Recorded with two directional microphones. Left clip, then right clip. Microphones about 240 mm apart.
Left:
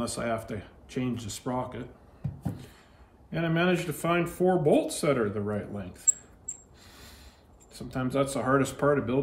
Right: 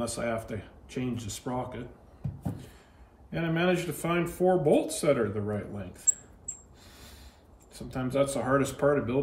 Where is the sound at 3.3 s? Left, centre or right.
Centre.